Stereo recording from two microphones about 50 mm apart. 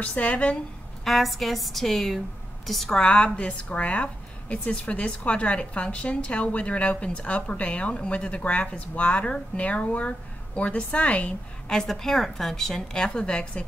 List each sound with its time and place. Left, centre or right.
0.0 s a woman's voice: left
1.0 s a woman's voice: centre
2.9 s a woman's voice: centre
11.7 s a woman's voice: centre